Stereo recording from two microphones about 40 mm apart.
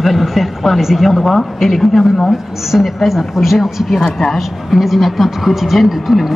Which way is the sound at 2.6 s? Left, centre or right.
Centre.